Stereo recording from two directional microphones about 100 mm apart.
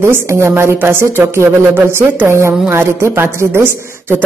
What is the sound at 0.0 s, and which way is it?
Speech, 25° right (ahead or behind).